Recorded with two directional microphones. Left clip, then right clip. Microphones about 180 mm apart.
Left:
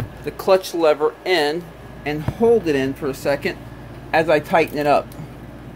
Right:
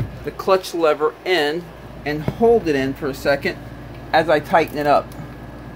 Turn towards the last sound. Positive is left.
turn(degrees=15)  # may be behind; listen again after turning